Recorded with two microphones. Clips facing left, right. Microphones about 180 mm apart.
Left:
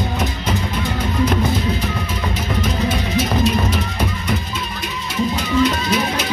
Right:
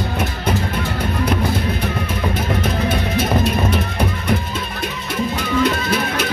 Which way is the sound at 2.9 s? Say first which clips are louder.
Right 1 dB; 55° right (ahead or behind).